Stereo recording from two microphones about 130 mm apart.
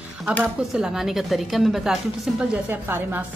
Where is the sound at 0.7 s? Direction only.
5° right (ahead or behind).